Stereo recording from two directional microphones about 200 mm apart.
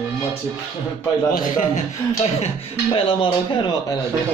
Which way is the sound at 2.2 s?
30° left (ahead or behind).